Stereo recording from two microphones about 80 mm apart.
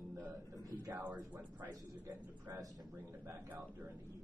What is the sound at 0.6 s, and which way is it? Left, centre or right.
Speech, right.